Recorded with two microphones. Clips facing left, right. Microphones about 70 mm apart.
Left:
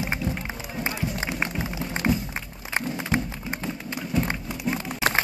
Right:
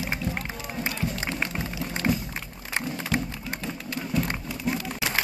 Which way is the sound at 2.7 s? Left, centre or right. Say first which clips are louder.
Left 2 dB; left.